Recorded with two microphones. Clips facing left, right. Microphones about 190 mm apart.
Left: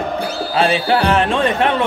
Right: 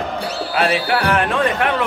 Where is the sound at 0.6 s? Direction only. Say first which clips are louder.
Left 3 dB; 30° left (ahead or behind).